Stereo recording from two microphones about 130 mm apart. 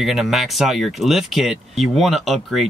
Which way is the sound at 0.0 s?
Centre (ahead or behind).